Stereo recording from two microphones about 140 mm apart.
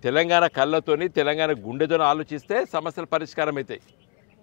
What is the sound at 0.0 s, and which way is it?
A man's voice, 15° left (ahead or behind).